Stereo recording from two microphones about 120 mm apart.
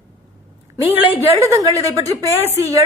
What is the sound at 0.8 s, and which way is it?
Speech, 15° right (ahead or behind).